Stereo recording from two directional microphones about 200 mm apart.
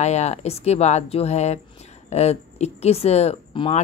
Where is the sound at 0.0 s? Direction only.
35° left (ahead or behind).